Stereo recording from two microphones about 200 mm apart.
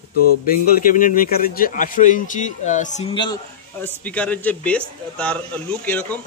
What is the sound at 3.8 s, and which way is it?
A man's voice, 5° left (ahead or behind).